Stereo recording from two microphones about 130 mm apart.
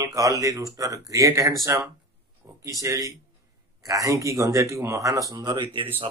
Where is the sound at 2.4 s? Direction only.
20° right (ahead or behind).